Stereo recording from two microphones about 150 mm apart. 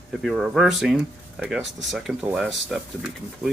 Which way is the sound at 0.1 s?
Centre (ahead or behind).